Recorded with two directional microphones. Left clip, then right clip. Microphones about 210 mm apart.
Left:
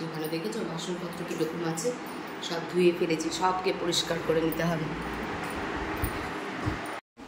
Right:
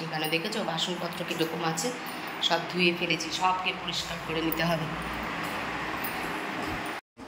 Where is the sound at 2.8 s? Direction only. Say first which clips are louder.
Left 1 dB; 20° left (ahead or behind).